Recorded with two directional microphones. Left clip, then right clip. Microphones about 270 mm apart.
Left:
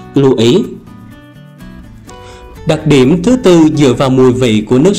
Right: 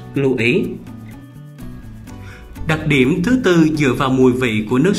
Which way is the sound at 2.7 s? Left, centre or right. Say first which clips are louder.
Left 7 dB; centre.